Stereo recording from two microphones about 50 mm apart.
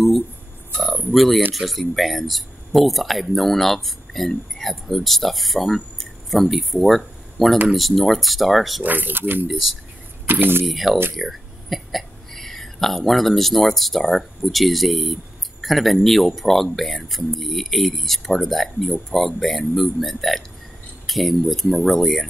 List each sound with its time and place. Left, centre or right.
1.1 s speech: centre
8.8 s speech: right
10.7 s speech: centre